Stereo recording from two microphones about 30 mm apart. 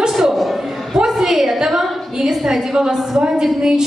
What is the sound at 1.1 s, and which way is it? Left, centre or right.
A man's voice, centre.